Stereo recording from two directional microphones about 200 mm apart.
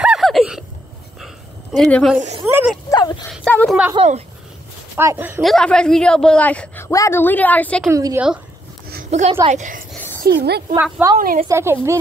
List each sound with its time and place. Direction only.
0.0 s hiccup: centre (ahead or behind)
1.8 s a woman's voice: 5° left (ahead or behind)
2.4 s speech: 10° right (ahead or behind)
2.9 s dog: 20° left (ahead or behind)
3.4 s a woman's voice: 5° left (ahead or behind)
3.9 s a woman's voice: 30° right (ahead or behind)
4.9 s speech: 10° right (ahead or behind)
5.4 s a woman's voice: centre (ahead or behind)
7.9 s speech: 15° right (ahead or behind)
9.1 s a woman's voice: 30° right (ahead or behind)
10.2 s a woman's voice: 55° right (ahead or behind)
10.8 s speech: 10° right (ahead or behind)
11.1 s a woman's voice: 40° right (ahead or behind)
11.4 s speech: 10° right (ahead or behind)